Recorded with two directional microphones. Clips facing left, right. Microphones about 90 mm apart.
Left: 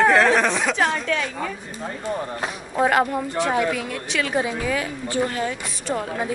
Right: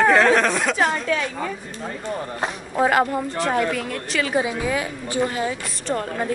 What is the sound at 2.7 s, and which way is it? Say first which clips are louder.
Speech: even; centre (ahead or behind).